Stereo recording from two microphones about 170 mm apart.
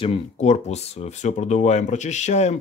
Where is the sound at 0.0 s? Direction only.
35° left (ahead or behind).